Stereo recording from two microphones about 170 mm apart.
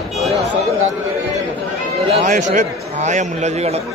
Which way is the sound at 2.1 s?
45° right (ahead or behind).